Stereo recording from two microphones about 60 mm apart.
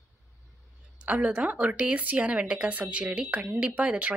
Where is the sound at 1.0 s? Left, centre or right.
Right.